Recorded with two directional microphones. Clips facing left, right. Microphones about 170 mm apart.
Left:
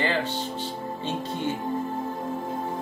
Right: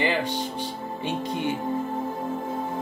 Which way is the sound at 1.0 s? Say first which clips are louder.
Right 2 dB; 15° right (ahead or behind).